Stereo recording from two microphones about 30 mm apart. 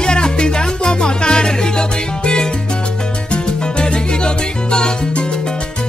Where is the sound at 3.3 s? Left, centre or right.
Left.